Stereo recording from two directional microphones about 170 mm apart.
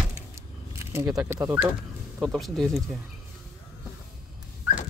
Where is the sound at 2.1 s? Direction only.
Centre (ahead or behind).